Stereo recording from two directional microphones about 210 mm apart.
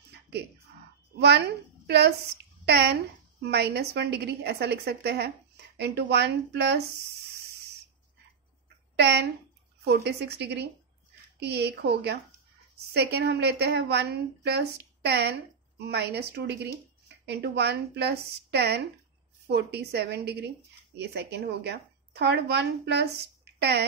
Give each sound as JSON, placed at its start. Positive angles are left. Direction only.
{"t": 1.1, "sound": "a child's voice", "side_deg": -50}
{"t": 8.9, "sound": "a woman's voice", "side_deg": -50}